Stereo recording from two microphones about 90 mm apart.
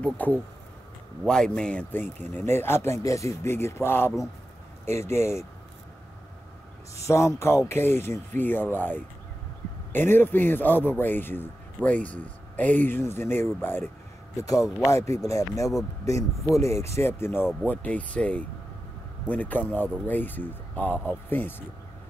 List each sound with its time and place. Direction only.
0.0 s speech: 15° left (ahead or behind)
7.0 s speech: 35° left (ahead or behind)
14.3 s speech: 40° left (ahead or behind)
17.6 s speech: 15° left (ahead or behind)